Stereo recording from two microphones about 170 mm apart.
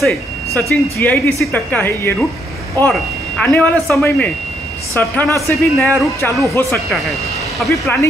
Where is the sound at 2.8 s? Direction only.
Centre (ahead or behind).